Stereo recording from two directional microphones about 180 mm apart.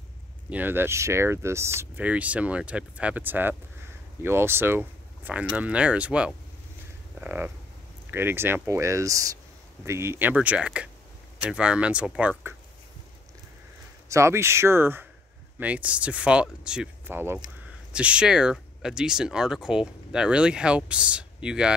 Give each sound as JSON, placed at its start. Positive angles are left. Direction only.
{"t": 0.5, "sound": "speech", "side_deg": -10}
{"t": 7.2, "sound": "a sound", "side_deg": -10}
{"t": 8.1, "sound": "speech", "side_deg": -10}
{"t": 14.0, "sound": "speech", "side_deg": -15}